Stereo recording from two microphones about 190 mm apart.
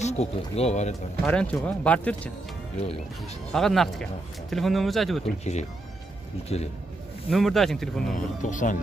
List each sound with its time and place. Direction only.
0.0 s speech: 35° left (ahead or behind)
1.2 s speech: 5° left (ahead or behind)
3.5 s speech: centre (ahead or behind)
5.4 s speech: 35° left (ahead or behind)
7.2 s speech: centre (ahead or behind)
8.4 s speech: 40° left (ahead or behind)